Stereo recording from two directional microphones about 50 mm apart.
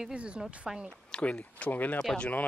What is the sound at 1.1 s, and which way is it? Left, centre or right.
Speech, left.